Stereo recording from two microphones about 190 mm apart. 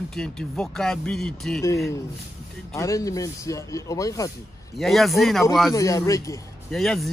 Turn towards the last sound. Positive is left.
turn(degrees=0)  # may be behind; listen again after turning